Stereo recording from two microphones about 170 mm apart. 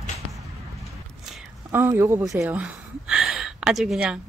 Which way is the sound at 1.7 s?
15° right (ahead or behind).